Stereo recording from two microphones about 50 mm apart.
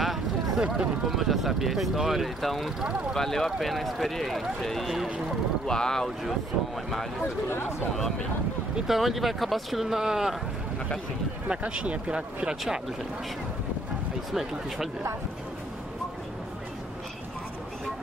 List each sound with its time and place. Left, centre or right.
0.6 s speech: centre
1.1 s speech: centre
5.7 s speech: centre
7.2 s speech: left
8.8 s speech: centre
11.4 s speech: right
14.3 s speech: centre